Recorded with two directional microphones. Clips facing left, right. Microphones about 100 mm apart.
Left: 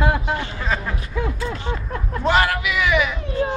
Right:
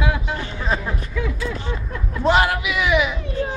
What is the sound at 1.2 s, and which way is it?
Speech, 40° left (ahead or behind).